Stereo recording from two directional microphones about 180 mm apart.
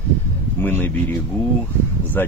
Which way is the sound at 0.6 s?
10° left (ahead or behind).